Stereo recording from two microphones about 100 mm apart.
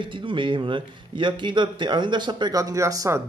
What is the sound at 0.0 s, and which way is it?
Speech, 55° right (ahead or behind).